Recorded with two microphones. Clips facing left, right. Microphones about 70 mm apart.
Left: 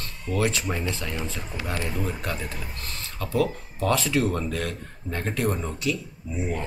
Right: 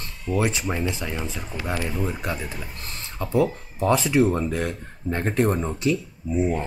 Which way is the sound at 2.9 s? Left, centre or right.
Right.